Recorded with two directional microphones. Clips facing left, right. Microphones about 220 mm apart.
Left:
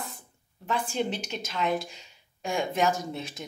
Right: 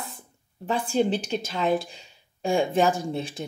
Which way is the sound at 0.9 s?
35° right (ahead or behind).